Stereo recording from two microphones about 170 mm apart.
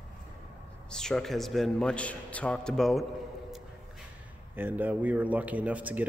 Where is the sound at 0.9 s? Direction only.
5° left (ahead or behind).